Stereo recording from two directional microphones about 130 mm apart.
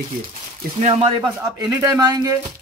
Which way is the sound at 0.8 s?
55° right (ahead or behind).